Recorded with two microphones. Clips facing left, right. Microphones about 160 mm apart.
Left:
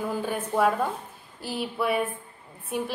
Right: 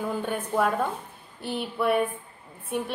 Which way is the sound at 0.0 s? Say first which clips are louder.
Even; centre (ahead or behind).